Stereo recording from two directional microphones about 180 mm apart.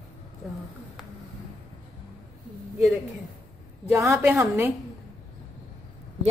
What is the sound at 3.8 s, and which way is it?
Speech, 10° right (ahead or behind).